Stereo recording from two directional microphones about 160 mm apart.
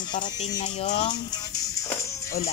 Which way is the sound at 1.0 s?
25° left (ahead or behind).